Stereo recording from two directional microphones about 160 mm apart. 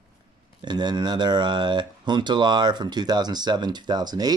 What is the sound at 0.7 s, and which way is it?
Speech, 25° right (ahead or behind).